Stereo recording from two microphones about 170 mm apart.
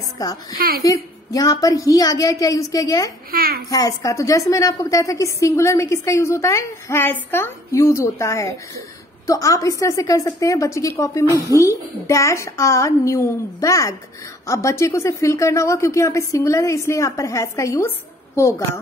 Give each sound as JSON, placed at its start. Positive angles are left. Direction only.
{"t": 0.2, "sound": "a woman's voice", "side_deg": 20}
{"t": 0.6, "sound": "a child's voice", "side_deg": -60}
{"t": 0.8, "sound": "a woman's voice", "side_deg": 20}
{"t": 3.3, "sound": "a child's voice", "side_deg": -60}
{"t": 3.7, "sound": "a woman's voice", "side_deg": 20}